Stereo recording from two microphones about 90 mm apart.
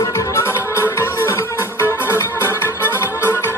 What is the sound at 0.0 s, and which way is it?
Music, 35° left (ahead or behind).